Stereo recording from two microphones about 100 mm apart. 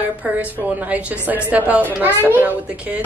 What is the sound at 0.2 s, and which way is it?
A child's voice, 15° right (ahead or behind).